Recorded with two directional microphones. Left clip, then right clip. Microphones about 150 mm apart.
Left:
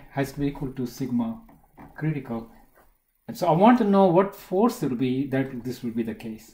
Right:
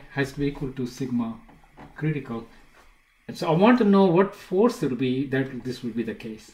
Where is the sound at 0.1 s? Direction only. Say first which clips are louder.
Right 1 dB; 25° left (ahead or behind).